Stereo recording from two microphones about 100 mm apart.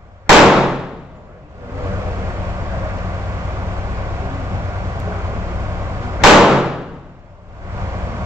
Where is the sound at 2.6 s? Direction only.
25° right (ahead or behind).